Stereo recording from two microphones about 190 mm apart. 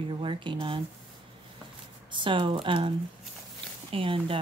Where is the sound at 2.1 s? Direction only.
25° right (ahead or behind).